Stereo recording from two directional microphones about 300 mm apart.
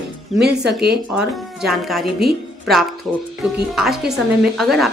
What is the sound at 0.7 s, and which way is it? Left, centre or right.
Speech, right.